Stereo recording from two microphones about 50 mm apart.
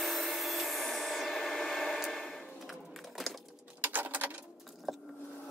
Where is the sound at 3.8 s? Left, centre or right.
Right.